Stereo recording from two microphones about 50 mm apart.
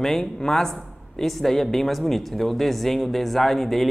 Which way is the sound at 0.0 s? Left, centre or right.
Centre.